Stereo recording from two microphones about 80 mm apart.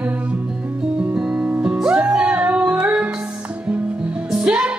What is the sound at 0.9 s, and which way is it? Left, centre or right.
Music, centre.